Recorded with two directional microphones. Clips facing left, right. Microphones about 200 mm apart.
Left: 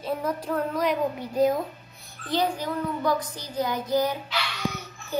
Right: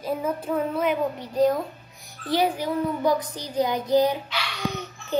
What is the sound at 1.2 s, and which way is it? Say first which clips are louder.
Speech: right 2 dB; 10° left (ahead or behind).